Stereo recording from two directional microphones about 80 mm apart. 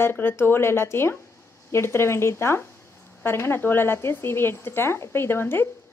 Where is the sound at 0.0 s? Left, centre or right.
Left.